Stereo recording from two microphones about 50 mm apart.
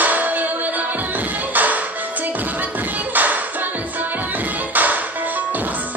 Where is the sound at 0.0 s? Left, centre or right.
Right.